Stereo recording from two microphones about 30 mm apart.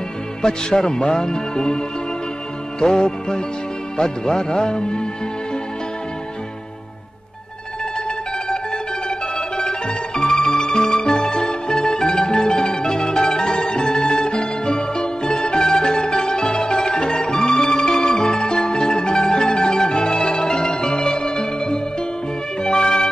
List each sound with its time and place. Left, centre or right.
0.4 s speech: left
2.8 s speech: left
9.6 s music: left